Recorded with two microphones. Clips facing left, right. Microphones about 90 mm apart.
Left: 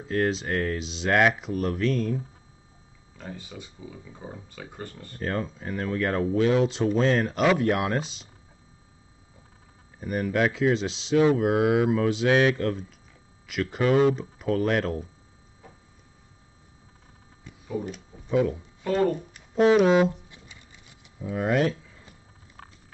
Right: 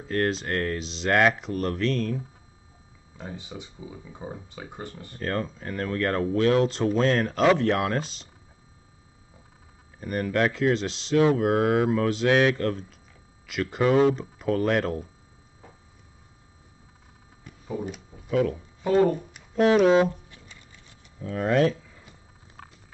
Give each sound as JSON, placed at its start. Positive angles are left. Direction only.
{"t": 0.1, "sound": "speech", "side_deg": 0}
{"t": 3.2, "sound": "speech", "side_deg": -20}
{"t": 5.2, "sound": "speech", "side_deg": 0}
{"t": 9.9, "sound": "speech", "side_deg": 0}
{"t": 17.5, "sound": "a sound", "side_deg": 0}
{"t": 18.5, "sound": "speech", "side_deg": -10}
{"t": 19.5, "sound": "speech", "side_deg": 5}
{"t": 20.1, "sound": "a sound", "side_deg": 20}